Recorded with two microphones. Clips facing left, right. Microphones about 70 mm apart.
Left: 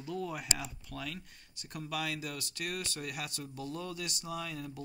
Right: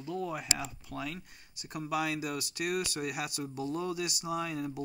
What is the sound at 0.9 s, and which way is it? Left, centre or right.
Speech, centre.